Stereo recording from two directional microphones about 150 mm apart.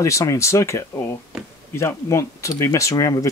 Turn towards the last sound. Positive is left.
turn(degrees=20)  # may be behind; listen again after turning